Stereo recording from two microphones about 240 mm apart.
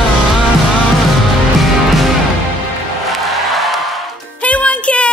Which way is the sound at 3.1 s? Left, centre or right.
Centre.